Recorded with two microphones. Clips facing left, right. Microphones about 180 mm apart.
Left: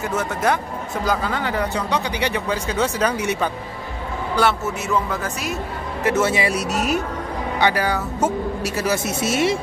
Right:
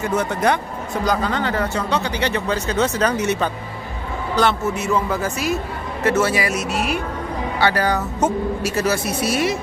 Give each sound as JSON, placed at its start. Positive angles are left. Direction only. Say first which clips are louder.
{"t": 0.0, "sound": "a man's voice", "louder": "right 2 dB", "side_deg": 5}
{"t": 6.0, "sound": "speech", "louder": "right 1 dB", "side_deg": 20}
{"t": 7.6, "sound": "speech", "louder": "right 1 dB", "side_deg": 10}
{"t": 8.8, "sound": "speech", "louder": "left 2 dB", "side_deg": 20}